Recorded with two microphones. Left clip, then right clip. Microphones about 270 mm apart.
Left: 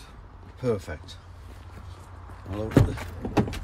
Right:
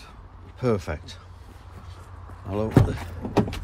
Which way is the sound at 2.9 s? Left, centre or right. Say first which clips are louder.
Right 2 dB; centre.